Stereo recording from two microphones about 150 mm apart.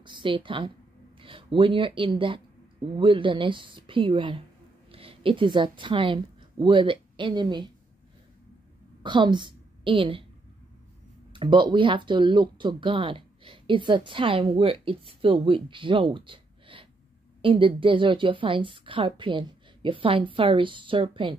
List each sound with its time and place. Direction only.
0.0 s a woman's voice: 30° right (ahead or behind)
9.0 s a woman's voice: 30° right (ahead or behind)
11.3 s speech: 30° right (ahead or behind)